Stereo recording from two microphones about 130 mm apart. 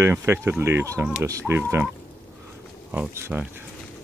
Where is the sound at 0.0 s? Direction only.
20° right (ahead or behind).